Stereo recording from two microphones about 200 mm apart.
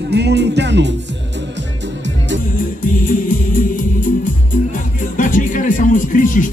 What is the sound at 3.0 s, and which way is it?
Music, 40° left (ahead or behind).